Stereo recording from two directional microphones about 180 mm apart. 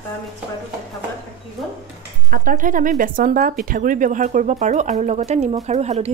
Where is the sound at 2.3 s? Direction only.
50° right (ahead or behind).